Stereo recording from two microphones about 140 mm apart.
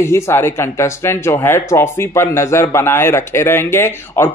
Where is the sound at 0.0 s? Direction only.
20° left (ahead or behind).